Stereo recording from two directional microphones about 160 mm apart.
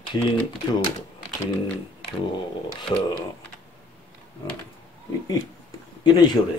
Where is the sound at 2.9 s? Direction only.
30° left (ahead or behind).